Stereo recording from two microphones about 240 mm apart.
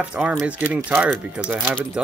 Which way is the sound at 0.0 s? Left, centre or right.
Centre.